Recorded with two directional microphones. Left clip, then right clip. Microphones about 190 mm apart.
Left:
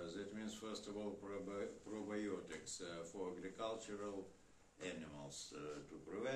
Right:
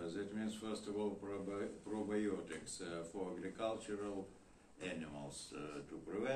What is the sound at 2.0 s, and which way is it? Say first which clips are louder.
Mantra: right 4 dB; 30° left (ahead or behind).